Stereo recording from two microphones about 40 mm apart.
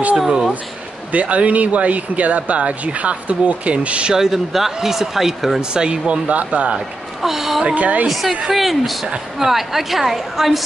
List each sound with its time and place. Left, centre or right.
1.1 s speech: right
4.1 s speech: centre
5.6 s speech: right
6.2 s speech: right
7.2 s a sound: centre
7.7 s speech: right
8.1 s a woman's voice: centre